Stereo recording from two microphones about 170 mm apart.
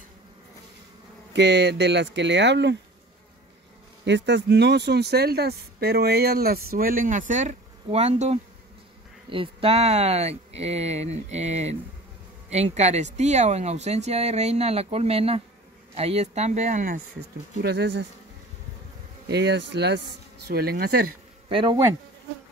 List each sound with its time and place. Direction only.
1.3 s speech: 90° right
4.0 s speech: 90° right; by 17.0 s 45° right (ahead or behind)
17.6 s speech: 75° right (ahead or behind)
19.2 s speech: 90° right
20.4 s speech: 70° right (ahead or behind)
21.5 s speech: 30° right (ahead or behind)